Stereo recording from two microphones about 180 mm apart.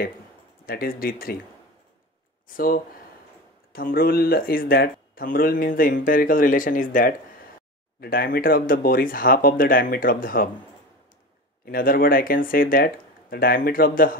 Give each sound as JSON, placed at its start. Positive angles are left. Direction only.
{"t": 0.7, "sound": "speech", "side_deg": 55}
{"t": 2.4, "sound": "speech", "side_deg": 50}
{"t": 11.6, "sound": "speech", "side_deg": 55}